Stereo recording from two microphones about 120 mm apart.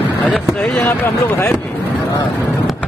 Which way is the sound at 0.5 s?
15° left (ahead or behind).